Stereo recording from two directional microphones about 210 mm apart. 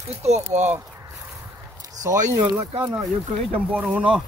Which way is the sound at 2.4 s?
10° right (ahead or behind).